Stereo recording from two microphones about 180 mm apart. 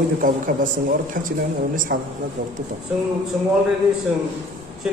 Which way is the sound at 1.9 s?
60° right (ahead or behind).